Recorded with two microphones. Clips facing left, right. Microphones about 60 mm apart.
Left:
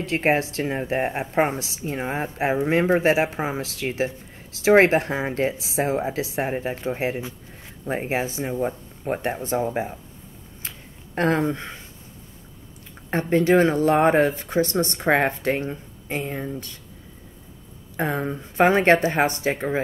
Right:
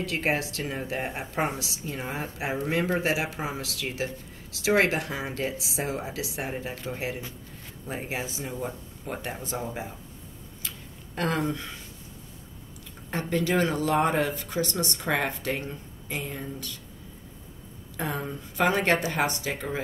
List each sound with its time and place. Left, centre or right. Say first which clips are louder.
0.0 s speech: left 6 dB; left
10.6 s tick-tock: left 2 dB; left
11.1 s speech: left 6 dB; left
13.1 s speech: left 8 dB; left
17.9 s speech: left 7 dB; left